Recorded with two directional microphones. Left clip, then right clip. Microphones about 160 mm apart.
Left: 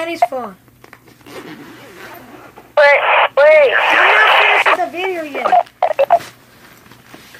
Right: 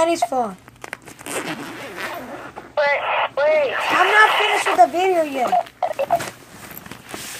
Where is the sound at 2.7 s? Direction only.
30° left (ahead or behind).